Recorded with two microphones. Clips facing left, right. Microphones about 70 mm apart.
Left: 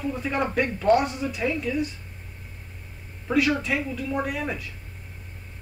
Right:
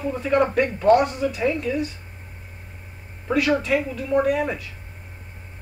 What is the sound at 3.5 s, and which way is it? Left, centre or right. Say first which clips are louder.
Speech: right 5 dB; right.